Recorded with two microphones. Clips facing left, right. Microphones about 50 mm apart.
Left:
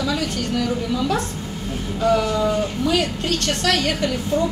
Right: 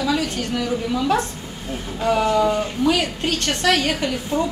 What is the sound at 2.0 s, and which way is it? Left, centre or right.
A woman's voice, right.